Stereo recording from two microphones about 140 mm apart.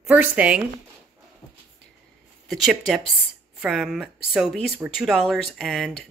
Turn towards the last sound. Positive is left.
turn(degrees=0)  # may be behind; listen again after turning